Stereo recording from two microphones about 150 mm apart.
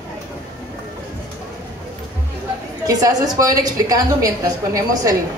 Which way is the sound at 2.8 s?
25° right (ahead or behind).